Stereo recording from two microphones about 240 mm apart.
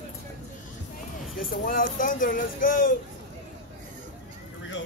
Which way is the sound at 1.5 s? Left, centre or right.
Left.